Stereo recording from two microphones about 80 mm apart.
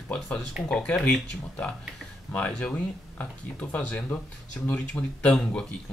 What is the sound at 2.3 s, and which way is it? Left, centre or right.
Speech, centre.